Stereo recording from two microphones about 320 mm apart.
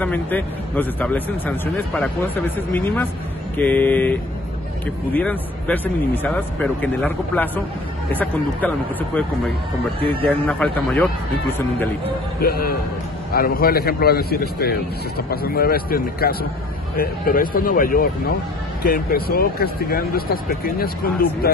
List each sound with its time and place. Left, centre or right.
0.0 s speech: centre
10.2 s speech: centre
12.4 s a man's voice: left